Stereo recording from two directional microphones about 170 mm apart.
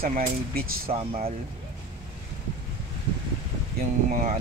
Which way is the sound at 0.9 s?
45° right (ahead or behind).